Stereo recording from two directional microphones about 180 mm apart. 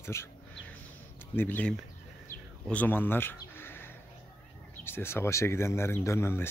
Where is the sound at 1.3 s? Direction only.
10° left (ahead or behind).